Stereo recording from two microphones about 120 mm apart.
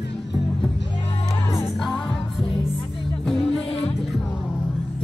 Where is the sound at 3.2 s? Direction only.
5° left (ahead or behind).